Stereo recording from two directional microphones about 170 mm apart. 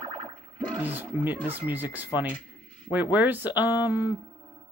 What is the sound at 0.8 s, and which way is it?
Speech, 10° right (ahead or behind).